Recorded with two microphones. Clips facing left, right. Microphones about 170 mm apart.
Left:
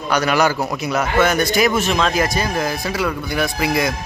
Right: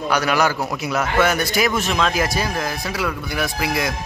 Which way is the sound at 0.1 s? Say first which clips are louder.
Left 3 dB; 5° right (ahead or behind).